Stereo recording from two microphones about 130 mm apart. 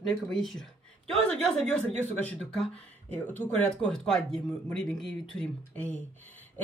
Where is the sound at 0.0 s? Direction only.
5° left (ahead or behind).